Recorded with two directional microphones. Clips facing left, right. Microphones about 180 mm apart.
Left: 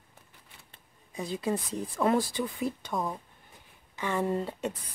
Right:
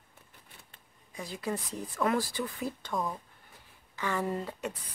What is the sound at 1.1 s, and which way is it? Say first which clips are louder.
A woman's voice: left 5 dB; 25° left (ahead or behind).